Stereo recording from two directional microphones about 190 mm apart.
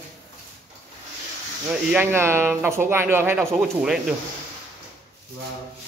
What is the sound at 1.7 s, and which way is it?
Speech, 10° right (ahead or behind).